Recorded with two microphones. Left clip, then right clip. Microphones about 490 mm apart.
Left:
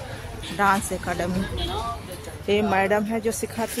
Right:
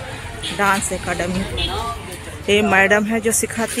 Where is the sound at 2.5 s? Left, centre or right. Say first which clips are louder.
Right 7 dB; left.